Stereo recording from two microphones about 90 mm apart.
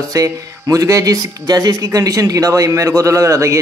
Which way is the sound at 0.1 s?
40° right (ahead or behind).